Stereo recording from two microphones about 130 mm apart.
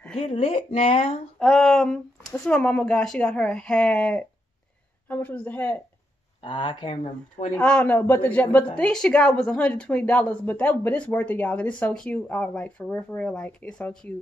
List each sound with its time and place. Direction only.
0.2 s speech: 50° left (ahead or behind)
1.4 s a woman's voice: 5° left (ahead or behind)
6.4 s speech: 35° left (ahead or behind)
7.5 s a woman's voice: 5° left (ahead or behind)